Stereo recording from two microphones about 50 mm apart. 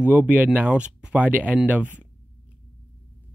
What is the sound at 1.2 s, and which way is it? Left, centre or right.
Speech, right.